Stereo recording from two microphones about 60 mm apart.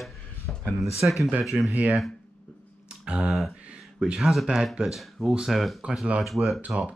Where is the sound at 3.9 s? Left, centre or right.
Centre.